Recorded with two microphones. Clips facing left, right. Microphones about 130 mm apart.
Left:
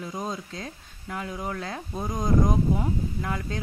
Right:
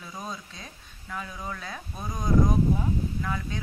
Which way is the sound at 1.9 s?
20° left (ahead or behind).